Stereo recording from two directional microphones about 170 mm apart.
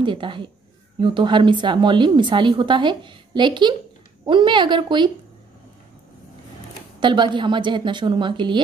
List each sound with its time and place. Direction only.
0.0 s a woman's voice: 30° right (ahead or behind)
7.0 s a woman's voice: 25° right (ahead or behind)